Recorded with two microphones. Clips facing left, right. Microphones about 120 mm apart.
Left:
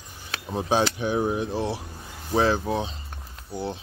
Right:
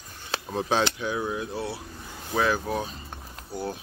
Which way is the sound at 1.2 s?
30° left (ahead or behind).